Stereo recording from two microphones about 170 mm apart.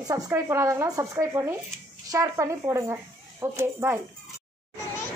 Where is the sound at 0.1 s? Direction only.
15° right (ahead or behind).